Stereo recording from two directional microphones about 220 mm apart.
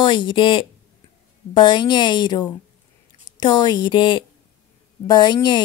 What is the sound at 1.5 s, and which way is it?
Speech, 20° left (ahead or behind).